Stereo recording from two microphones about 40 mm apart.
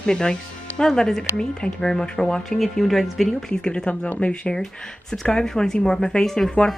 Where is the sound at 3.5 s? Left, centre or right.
Left.